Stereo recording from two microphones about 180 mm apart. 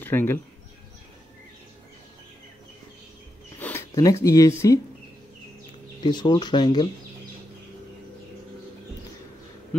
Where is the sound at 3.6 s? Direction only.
10° left (ahead or behind).